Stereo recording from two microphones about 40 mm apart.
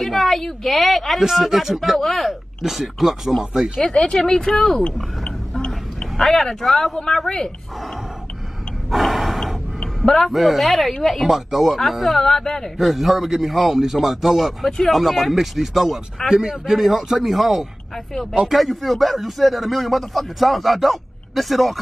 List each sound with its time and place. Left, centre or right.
0.0 s a sound: centre
0.7 s speech: centre
1.8 s speech: centre
2.6 s speech: centre
3.9 s speech: centre
6.1 s speech: centre
8.9 s gasp: centre
9.8 s a sound: centre
10.3 s speech: centre
12.7 s speech: centre